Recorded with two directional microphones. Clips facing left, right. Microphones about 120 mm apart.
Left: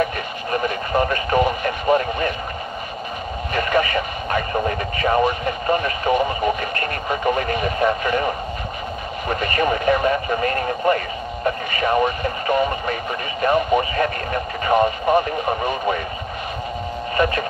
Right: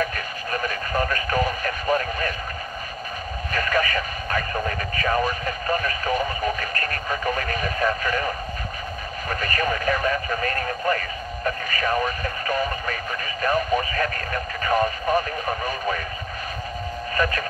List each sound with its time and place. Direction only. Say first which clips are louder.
0.0 s radio: left 4 dB; 25° left (ahead or behind)
3.5 s radio: left 4 dB; 25° left (ahead or behind)
9.3 s speech: left 5 dB; 25° left (ahead or behind)
17.2 s speech: left 5 dB; 25° left (ahead or behind)